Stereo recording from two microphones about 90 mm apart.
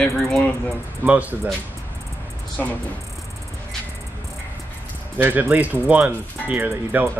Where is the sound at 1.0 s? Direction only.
15° right (ahead or behind).